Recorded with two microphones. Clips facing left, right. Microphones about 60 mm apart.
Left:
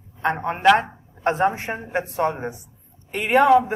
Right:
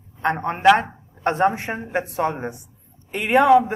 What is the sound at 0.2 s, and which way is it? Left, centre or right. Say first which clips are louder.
A man's voice: right 1 dB; centre.